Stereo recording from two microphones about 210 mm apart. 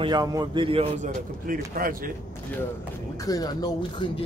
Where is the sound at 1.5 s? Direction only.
40° right (ahead or behind).